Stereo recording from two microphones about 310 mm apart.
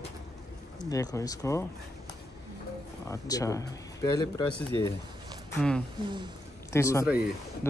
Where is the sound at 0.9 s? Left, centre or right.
Centre.